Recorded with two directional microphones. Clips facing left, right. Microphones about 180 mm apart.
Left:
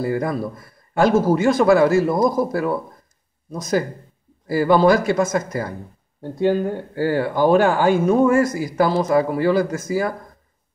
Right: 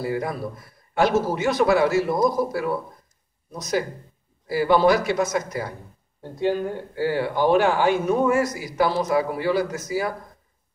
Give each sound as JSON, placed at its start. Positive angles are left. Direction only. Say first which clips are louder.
{"t": 0.0, "sound": "speech", "louder": "left 4 dB", "side_deg": 50}